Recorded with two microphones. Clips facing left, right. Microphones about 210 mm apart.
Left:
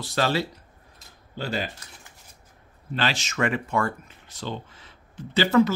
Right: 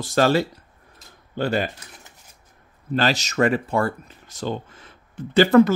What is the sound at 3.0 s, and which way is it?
Speech, 40° right (ahead or behind).